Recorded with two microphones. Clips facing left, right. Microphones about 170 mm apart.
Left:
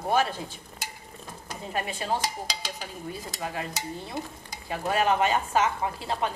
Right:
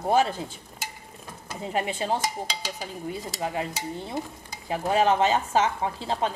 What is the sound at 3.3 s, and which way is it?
Speech, 25° right (ahead or behind).